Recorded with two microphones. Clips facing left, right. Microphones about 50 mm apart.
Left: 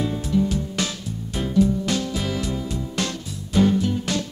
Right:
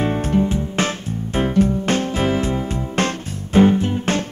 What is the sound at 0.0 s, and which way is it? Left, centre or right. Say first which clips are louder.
Music: right 4 dB; right.